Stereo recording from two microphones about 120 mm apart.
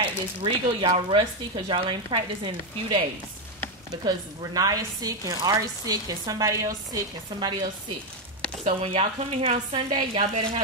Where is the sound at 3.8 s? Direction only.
30° right (ahead or behind).